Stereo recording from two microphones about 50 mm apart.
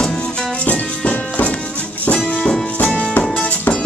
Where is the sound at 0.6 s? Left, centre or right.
Left.